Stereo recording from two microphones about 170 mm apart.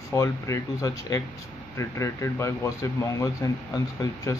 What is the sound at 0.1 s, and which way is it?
Speech, 15° left (ahead or behind).